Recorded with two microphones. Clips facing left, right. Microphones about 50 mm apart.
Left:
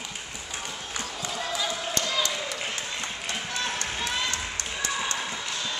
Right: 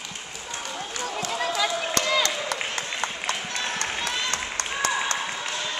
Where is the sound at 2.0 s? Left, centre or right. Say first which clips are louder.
Right 5 dB; right.